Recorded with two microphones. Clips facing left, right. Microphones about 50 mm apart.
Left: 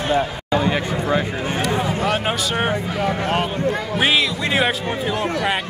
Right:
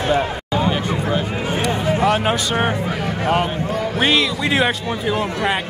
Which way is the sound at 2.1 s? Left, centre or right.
Centre.